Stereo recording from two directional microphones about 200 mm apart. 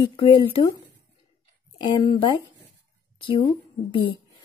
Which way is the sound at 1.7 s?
20° left (ahead or behind).